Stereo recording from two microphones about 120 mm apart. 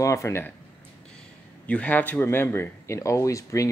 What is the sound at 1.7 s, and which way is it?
Speech, 10° left (ahead or behind).